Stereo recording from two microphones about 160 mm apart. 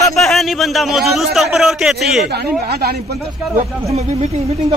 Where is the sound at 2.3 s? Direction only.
85° right.